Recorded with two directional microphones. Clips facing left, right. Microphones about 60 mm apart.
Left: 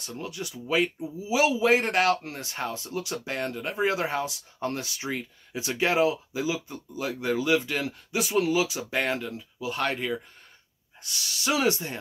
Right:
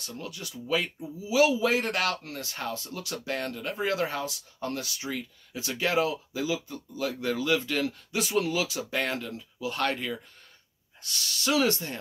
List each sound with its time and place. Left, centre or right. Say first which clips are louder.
0.0 s speech: left 3 dB; left